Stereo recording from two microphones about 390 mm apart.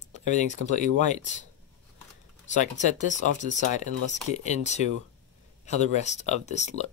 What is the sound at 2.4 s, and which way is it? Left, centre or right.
Speech, centre.